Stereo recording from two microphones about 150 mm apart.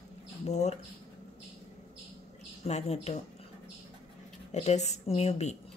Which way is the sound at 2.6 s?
45° left (ahead or behind).